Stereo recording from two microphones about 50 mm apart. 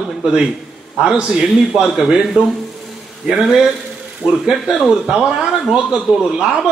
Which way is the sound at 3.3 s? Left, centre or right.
Centre.